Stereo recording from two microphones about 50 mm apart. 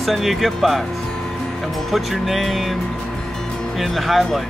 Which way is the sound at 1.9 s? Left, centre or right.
Centre.